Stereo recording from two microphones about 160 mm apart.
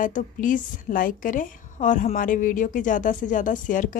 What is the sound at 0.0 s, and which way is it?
A woman's voice, 55° left (ahead or behind).